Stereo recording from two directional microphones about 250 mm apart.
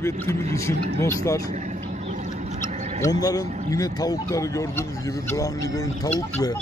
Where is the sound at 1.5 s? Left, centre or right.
Right.